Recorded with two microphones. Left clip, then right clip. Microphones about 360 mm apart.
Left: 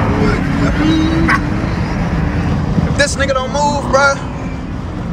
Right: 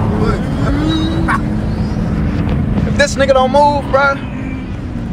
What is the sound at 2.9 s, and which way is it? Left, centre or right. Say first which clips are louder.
Speech: right 4 dB; centre.